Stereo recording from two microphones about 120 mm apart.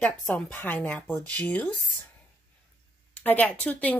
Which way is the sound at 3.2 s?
10° left (ahead or behind).